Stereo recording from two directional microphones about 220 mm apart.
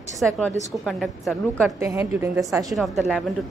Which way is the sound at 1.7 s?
10° right (ahead or behind).